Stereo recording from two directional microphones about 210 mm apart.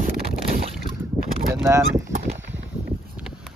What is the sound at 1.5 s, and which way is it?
Speech, 15° right (ahead or behind).